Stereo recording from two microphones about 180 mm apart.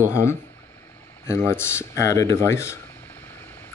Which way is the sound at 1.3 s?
15° left (ahead or behind).